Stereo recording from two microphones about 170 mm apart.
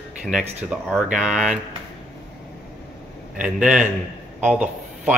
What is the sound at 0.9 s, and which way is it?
Speech, 5° right (ahead or behind).